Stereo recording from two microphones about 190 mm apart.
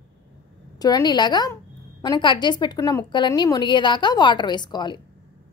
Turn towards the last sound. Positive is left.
turn(degrees=25)  # may be behind; listen again after turning